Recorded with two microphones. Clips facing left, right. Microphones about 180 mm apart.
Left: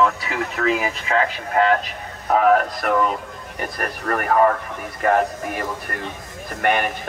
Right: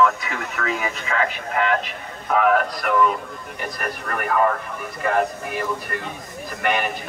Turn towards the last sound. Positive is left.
turn(degrees=50)  # may be behind; listen again after turning